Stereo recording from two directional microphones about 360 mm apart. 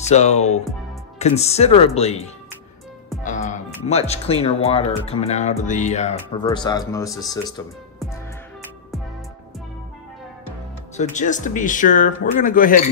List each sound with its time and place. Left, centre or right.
0.0 s speech: centre
3.3 s speech: centre
11.0 s speech: centre